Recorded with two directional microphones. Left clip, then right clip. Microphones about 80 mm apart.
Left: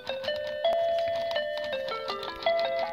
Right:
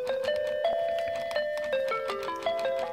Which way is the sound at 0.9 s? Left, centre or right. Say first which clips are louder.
Left 2 dB; centre.